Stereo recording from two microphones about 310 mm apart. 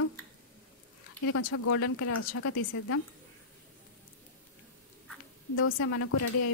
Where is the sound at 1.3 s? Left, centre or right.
Left.